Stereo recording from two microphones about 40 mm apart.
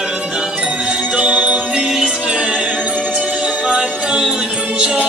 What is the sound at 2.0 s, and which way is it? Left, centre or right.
Music, right.